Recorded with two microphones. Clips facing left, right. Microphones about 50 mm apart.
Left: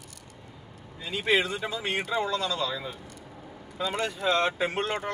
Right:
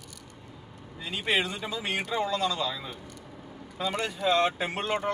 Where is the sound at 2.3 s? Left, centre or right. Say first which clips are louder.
Right 1 dB; right.